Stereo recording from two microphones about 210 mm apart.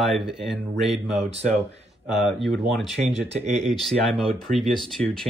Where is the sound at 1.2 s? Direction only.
30° right (ahead or behind).